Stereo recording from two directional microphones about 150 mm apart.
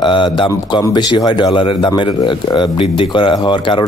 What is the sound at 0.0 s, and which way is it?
A man's voice, 35° left (ahead or behind).